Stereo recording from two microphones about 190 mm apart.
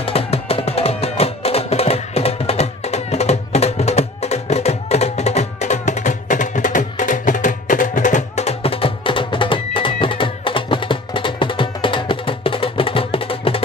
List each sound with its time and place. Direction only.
0.0 s music: 30° left (ahead or behind)